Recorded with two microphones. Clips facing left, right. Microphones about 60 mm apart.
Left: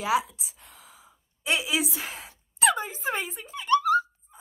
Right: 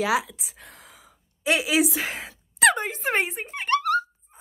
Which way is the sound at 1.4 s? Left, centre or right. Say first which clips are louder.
Right 5 dB; right.